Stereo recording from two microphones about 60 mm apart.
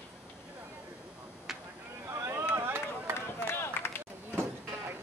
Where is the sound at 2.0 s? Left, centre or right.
Right.